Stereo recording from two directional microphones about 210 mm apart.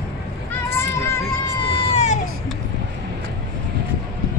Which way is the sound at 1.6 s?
30° left (ahead or behind).